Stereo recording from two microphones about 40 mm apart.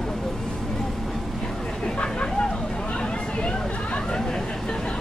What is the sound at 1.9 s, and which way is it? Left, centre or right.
Vehicle, left.